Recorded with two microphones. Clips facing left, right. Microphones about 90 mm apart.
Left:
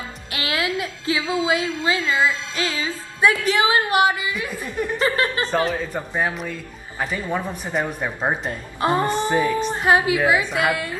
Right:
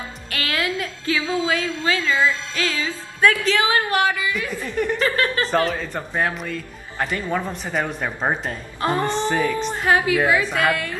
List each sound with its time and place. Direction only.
0.3 s a woman's voice: 20° left (ahead or behind)
5.7 s speech: 10° left (ahead or behind)